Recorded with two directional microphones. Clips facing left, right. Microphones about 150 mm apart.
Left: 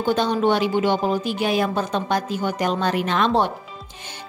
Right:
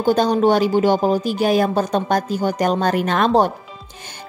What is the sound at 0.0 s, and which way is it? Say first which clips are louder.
A woman's voice: right 4 dB; 40° right (ahead or behind).